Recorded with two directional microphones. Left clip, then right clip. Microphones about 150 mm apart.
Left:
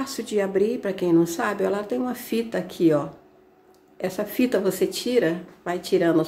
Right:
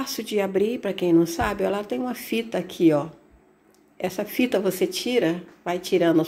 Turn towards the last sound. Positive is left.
turn(degrees=0)  # may be behind; listen again after turning